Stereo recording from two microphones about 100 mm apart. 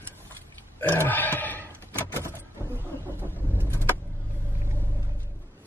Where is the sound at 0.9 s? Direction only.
20° left (ahead or behind).